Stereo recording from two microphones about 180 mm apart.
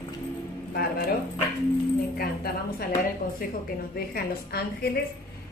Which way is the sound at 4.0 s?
60° left (ahead or behind).